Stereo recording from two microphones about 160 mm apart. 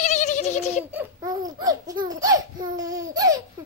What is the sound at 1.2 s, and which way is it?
Babbling, 25° right (ahead or behind).